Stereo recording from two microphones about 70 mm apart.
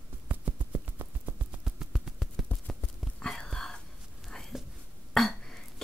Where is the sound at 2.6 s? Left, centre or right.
Centre.